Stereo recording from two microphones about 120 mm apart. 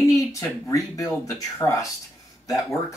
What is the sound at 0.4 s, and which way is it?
Speech, 30° left (ahead or behind).